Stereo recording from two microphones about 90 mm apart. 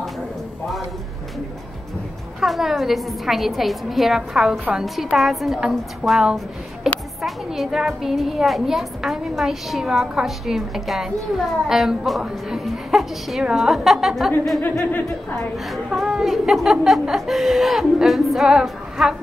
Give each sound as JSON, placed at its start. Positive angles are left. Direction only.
{"t": 2.4, "sound": "a woman's voice", "side_deg": 0}
{"t": 14.8, "sound": "speech", "side_deg": 20}
{"t": 15.3, "sound": "a woman's voice", "side_deg": 0}